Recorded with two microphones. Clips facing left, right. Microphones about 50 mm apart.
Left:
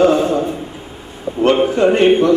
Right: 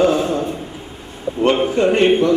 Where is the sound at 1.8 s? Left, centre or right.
Centre.